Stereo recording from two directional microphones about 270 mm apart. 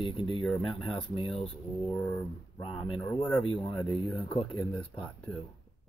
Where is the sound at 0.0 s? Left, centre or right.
Centre.